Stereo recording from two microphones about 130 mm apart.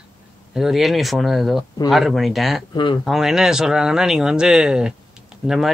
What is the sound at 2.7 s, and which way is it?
Speech, 35° left (ahead or behind).